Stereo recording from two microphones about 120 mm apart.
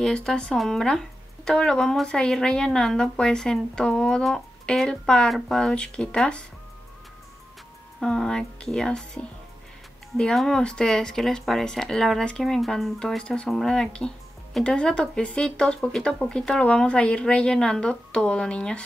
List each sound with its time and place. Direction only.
0.0 s speech: 5° left (ahead or behind)
8.0 s speech: 5° left (ahead or behind)